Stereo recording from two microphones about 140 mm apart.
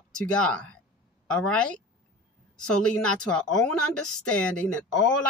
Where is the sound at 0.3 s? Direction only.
10° left (ahead or behind).